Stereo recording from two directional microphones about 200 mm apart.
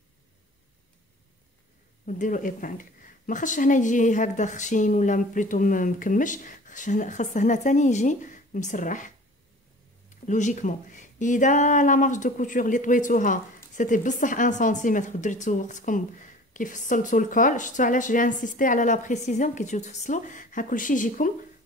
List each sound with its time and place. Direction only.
2.0 s speech: 40° left (ahead or behind)
10.2 s speech: 40° left (ahead or behind)